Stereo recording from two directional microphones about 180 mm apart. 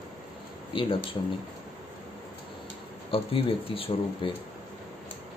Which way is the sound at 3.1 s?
30° left (ahead or behind).